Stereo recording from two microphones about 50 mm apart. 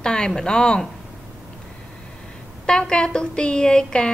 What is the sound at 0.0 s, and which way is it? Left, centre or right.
Speech, centre.